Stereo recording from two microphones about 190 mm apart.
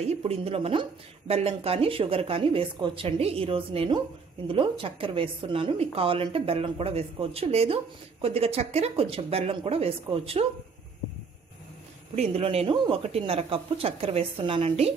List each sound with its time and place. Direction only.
0.0 s a woman's voice: 35° right (ahead or behind)
12.2 s speech: 30° right (ahead or behind)